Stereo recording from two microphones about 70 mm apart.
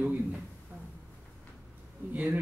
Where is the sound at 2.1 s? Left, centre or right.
Right.